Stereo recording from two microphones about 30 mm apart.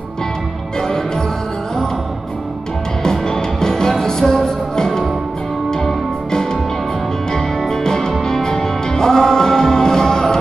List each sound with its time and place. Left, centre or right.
0.7 s music: left
3.0 s music: left